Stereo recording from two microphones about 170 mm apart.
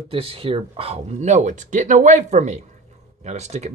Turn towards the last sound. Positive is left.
turn(degrees=-40)  # may be behind; listen again after turning